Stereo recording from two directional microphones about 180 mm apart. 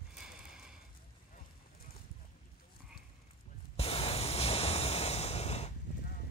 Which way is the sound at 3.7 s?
35° left (ahead or behind).